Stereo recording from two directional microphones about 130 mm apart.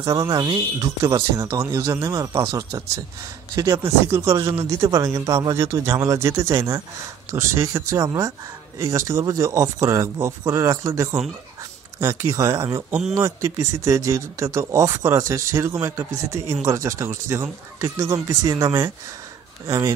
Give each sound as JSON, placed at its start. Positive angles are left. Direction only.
{"t": 0.0, "sound": "speech", "side_deg": -30}